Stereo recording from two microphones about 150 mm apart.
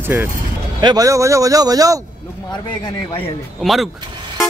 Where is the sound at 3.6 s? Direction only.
Centre (ahead or behind).